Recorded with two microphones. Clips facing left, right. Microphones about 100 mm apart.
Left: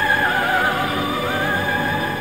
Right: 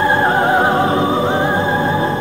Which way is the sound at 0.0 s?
25° right (ahead or behind).